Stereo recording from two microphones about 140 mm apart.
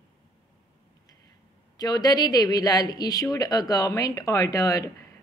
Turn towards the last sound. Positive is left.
turn(degrees=25)  # may be behind; listen again after turning